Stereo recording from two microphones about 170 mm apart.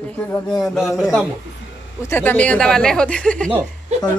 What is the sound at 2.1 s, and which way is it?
Speech, 10° left (ahead or behind).